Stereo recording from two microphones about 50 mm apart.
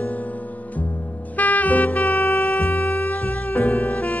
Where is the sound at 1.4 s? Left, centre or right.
Left.